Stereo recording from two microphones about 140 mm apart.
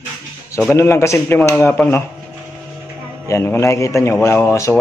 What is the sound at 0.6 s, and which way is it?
A man's voice, 15° left (ahead or behind).